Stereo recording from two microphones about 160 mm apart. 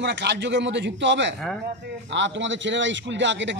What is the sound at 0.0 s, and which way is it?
A man's voice, 90° right.